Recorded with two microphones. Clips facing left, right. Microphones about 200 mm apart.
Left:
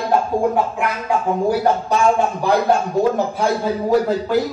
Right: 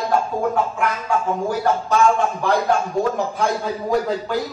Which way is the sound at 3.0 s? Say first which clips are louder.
Left 3 dB; 5° left (ahead or behind).